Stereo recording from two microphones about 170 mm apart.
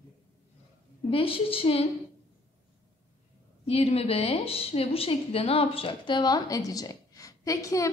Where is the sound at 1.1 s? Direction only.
35° left (ahead or behind).